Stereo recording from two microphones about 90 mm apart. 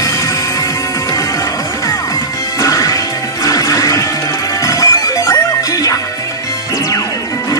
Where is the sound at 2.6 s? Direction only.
40° left (ahead or behind).